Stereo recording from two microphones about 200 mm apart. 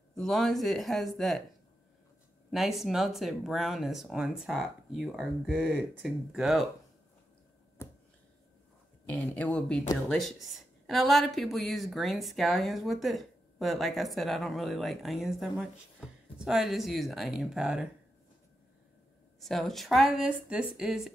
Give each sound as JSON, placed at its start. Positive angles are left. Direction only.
{"t": 0.1, "sound": "speech", "side_deg": 0}
{"t": 2.5, "sound": "speech", "side_deg": 0}
{"t": 7.8, "sound": "a sound", "side_deg": 15}
{"t": 9.1, "sound": "speech", "side_deg": 5}
{"t": 19.4, "sound": "speech", "side_deg": 0}